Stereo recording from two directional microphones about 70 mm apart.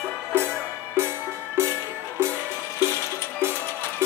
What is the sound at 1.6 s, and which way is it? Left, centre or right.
Music, right.